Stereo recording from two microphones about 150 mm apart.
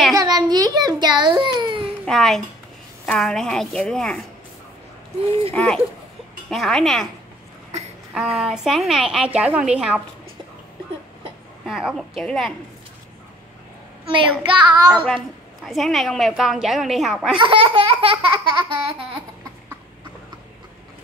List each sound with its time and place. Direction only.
0.1 s baby cry: 25° right (ahead or behind)
2.0 s a woman's voice: centre (ahead or behind)
5.5 s a woman's voice: 5° left (ahead or behind)
8.1 s a woman's voice: 5° right (ahead or behind)
11.6 s a woman's voice: centre (ahead or behind)
14.1 s laughter: 35° right (ahead or behind)
15.0 s a woman's voice: centre (ahead or behind)
17.4 s laughter: 35° right (ahead or behind)